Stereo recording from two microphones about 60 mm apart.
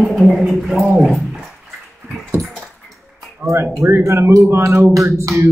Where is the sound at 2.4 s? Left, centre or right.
Centre.